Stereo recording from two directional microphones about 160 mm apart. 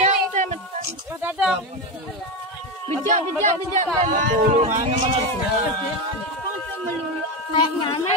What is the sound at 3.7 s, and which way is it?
Speech, 55° right (ahead or behind).